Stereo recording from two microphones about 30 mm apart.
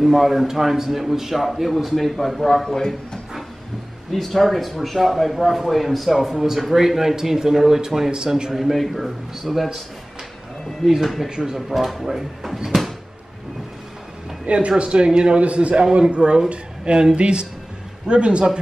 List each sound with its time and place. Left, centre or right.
0.0 s a man's voice: centre
2.4 s a man's voice: centre
4.1 s a man's voice: centre
8.5 s a man's voice: centre
10.8 s speech: centre
11.2 s speech: right
11.5 s a man's voice: centre
12.6 s cupboard open or close: centre
14.4 s a man's voice: right
15.4 s a man's voice: right